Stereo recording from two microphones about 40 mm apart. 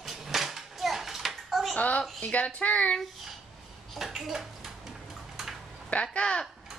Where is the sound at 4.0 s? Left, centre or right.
Centre.